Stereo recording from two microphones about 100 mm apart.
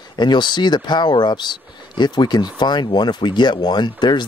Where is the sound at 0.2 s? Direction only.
50° left (ahead or behind).